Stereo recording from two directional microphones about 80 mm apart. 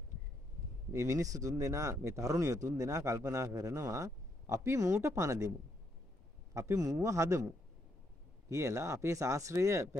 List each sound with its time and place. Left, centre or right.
0.9 s speech: right
6.5 s speech: right
8.5 s speech: right